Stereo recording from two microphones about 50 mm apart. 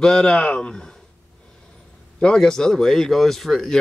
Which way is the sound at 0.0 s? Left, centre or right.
Centre.